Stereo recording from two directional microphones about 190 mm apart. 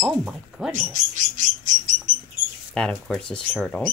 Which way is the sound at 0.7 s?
40° right (ahead or behind).